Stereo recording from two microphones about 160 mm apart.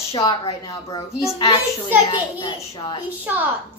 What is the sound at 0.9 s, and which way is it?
A child's voice, 25° left (ahead or behind).